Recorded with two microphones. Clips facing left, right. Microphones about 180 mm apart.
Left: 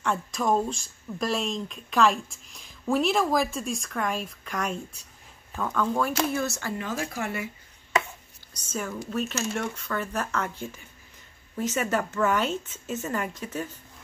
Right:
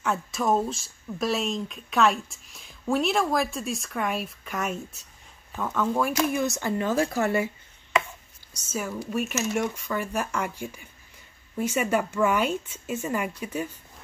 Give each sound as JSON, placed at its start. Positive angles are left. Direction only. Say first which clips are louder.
{"t": 0.0, "sound": "speech", "louder": "right 1 dB", "side_deg": -5}
{"t": 6.8, "sound": "speech", "louder": "right 9 dB", "side_deg": -35}
{"t": 8.6, "sound": "speech", "louder": "right 1 dB", "side_deg": -10}